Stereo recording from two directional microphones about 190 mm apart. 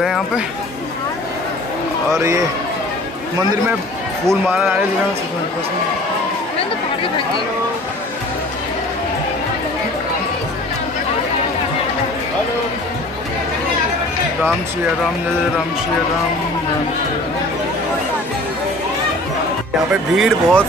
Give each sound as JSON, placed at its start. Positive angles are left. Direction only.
{"t": 2.1, "sound": "a man's voice", "side_deg": -15}
{"t": 4.3, "sound": "a man's voice", "side_deg": -10}
{"t": 19.9, "sound": "speech", "side_deg": 0}